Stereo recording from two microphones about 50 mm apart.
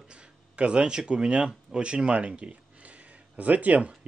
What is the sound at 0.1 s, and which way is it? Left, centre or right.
Speech, right.